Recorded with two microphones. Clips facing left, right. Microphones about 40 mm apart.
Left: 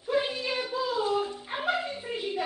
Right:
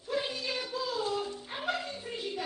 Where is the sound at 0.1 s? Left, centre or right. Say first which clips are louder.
Left 5 dB; left.